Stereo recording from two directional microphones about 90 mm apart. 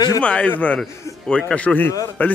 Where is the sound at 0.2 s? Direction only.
15° left (ahead or behind).